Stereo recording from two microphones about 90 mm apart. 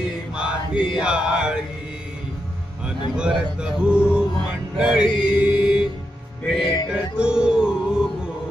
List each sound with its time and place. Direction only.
0.3 s chant: 10° right (ahead or behind)
2.8 s speech: 10° right (ahead or behind)
6.6 s music: 55° left (ahead or behind)
7.2 s a sound: 10° right (ahead or behind)